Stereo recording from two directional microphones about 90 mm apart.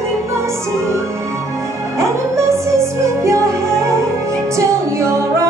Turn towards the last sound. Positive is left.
turn(degrees=-35)  # may be behind; listen again after turning